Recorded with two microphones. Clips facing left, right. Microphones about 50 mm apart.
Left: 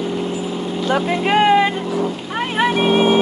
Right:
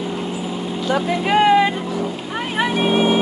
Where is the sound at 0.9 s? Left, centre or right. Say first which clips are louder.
Left 1 dB; left.